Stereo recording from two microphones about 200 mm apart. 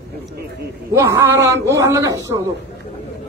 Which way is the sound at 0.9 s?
15° right (ahead or behind).